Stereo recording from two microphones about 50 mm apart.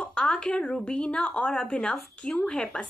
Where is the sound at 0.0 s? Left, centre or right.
Centre.